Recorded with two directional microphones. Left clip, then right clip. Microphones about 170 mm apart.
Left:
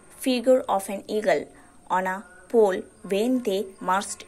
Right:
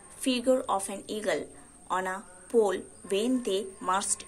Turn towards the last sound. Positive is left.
turn(degrees=20)  # may be behind; listen again after turning